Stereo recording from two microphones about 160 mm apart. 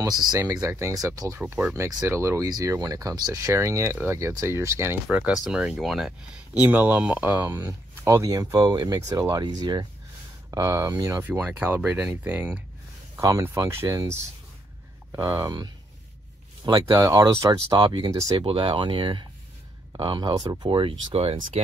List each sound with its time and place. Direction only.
0.0 s speech: 25° right (ahead or behind)
5.0 s speech: 5° right (ahead or behind)
15.1 s speech: 20° right (ahead or behind)
17.6 s speech: 30° right (ahead or behind)